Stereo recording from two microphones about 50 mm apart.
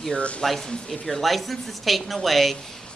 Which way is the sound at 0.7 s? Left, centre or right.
Centre.